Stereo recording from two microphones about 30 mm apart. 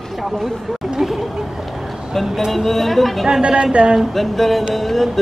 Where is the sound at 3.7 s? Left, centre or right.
Right.